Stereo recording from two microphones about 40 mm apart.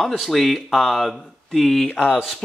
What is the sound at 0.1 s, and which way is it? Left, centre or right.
Speech, centre.